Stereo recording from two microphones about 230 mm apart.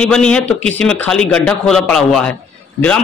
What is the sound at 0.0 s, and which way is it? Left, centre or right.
A man's voice, centre.